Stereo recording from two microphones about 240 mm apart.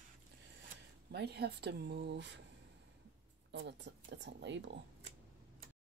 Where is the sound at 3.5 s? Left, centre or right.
Right.